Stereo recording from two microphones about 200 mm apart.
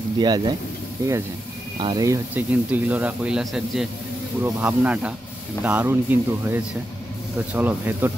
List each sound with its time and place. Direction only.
0.2 s speech: 20° right (ahead or behind)
1.8 s speech: 20° right (ahead or behind)